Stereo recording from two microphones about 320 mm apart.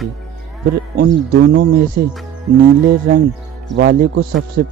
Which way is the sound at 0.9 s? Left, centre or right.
Right.